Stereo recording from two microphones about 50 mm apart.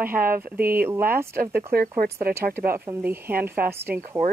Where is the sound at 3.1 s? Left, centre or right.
Right.